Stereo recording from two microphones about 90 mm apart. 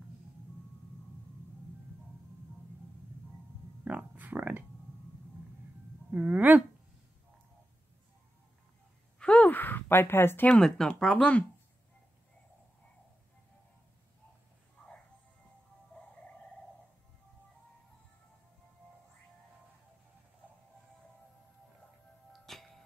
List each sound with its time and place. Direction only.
3.8 s speech: 20° right (ahead or behind)
6.0 s speech: 15° right (ahead or behind)
9.2 s a sound: 15° left (ahead or behind)
10.5 s speech: 5° left (ahead or behind)
15.9 s music: 15° left (ahead or behind)
22.3 s music: 5° left (ahead or behind)